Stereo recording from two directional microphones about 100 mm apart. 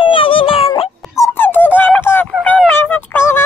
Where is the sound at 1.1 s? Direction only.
25° left (ahead or behind).